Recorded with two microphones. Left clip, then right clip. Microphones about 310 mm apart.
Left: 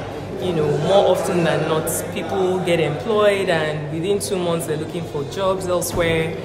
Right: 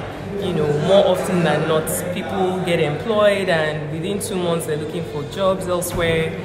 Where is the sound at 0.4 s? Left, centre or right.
Centre.